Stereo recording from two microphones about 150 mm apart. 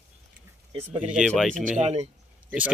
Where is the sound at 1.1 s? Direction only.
Centre (ahead or behind).